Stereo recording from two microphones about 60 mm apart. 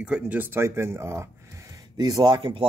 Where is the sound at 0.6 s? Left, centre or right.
Right.